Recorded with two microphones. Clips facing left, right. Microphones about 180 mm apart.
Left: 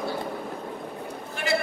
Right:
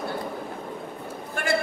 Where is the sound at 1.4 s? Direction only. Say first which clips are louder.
Right 3 dB; 50° right (ahead or behind).